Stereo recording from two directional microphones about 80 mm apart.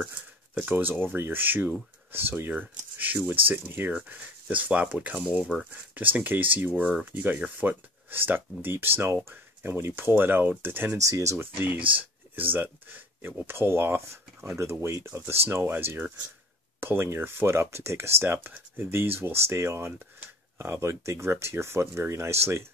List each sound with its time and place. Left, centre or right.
0.6 s speech: right
5.7 s speech: right
11.1 s speech: right
12.0 s speech: right